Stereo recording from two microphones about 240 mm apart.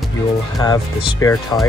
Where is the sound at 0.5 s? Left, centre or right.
Centre.